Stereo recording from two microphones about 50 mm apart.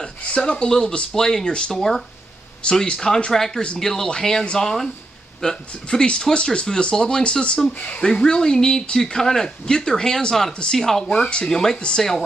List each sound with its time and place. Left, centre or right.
0.4 s speech: centre
1.7 s speech: centre
3.6 s speech: left
8.0 s speech: centre